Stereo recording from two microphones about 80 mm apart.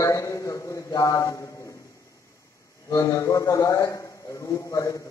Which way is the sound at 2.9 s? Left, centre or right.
Left.